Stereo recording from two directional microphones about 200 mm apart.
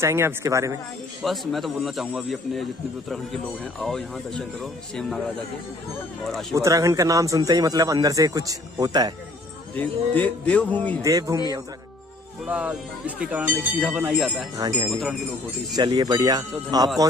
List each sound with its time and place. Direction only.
0.0 s a man's voice: 10° right (ahead or behind)
1.2 s a man's voice: centre (ahead or behind)
3.8 s a man's voice: centre (ahead or behind)
6.5 s a man's voice: 15° right (ahead or behind)
9.8 s a man's voice: 10° left (ahead or behind)
11.0 s a man's voice: 15° right (ahead or behind)
12.4 s a man's voice: 5° right (ahead or behind)
15.7 s speech: 20° right (ahead or behind)